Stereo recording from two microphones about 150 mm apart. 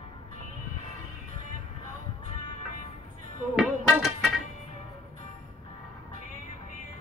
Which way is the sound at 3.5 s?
Centre (ahead or behind).